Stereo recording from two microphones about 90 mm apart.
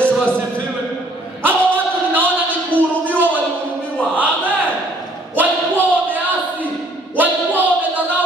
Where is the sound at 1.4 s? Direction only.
20° right (ahead or behind).